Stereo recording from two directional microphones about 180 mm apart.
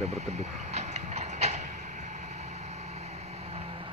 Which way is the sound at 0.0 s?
40° right (ahead or behind).